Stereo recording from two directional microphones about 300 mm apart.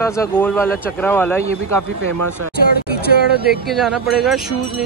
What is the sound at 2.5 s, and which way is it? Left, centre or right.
Speech, left.